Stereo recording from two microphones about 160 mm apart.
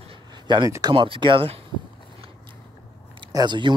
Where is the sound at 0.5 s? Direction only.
25° right (ahead or behind).